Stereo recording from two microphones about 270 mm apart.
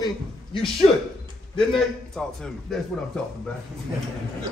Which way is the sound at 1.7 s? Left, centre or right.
Centre.